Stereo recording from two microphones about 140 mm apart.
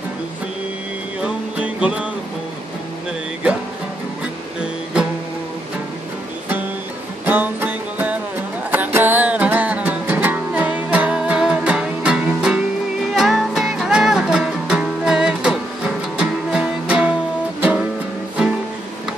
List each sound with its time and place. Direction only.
1.2 s music: 10° right (ahead or behind)
7.2 s music: 10° right (ahead or behind)